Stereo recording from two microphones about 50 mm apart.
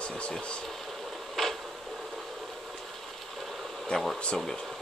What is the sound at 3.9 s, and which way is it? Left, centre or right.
Speech, centre.